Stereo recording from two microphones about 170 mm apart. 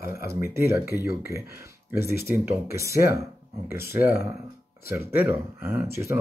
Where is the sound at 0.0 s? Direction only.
15° right (ahead or behind).